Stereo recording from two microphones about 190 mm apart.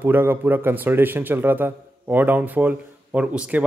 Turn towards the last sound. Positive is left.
turn(degrees=-5)  # may be behind; listen again after turning